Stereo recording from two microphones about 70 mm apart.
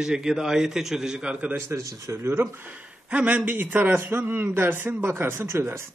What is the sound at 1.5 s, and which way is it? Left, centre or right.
Speech, right.